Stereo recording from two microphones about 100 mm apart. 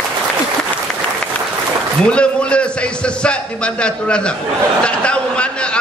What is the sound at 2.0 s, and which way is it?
A man's voice, 10° left (ahead or behind).